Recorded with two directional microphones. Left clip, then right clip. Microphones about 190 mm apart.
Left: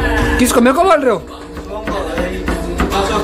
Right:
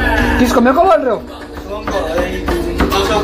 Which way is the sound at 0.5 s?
25° left (ahead or behind).